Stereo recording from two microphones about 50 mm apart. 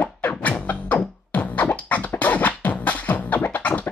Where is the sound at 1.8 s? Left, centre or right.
Left.